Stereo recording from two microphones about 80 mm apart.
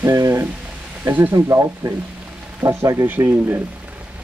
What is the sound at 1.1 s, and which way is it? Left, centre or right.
Speech, right.